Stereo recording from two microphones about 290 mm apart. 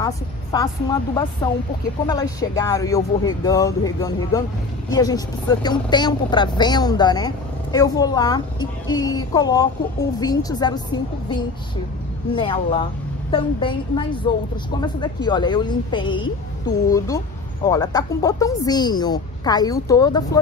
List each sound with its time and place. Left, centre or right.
0.0 s a woman's voice: centre